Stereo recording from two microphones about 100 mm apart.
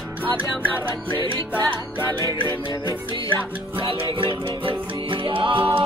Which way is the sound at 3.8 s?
60° right (ahead or behind).